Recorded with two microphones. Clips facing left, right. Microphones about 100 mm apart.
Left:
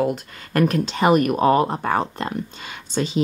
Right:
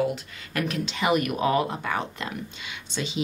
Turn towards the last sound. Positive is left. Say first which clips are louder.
# left 7 dB
turn(degrees=40)  # may be behind; listen again after turning